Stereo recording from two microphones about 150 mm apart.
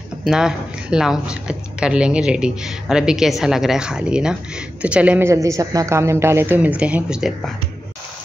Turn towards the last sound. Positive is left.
turn(degrees=-5)  # may be behind; listen again after turning